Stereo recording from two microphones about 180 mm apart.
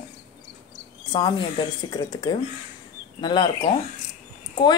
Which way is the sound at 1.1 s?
25° left (ahead or behind).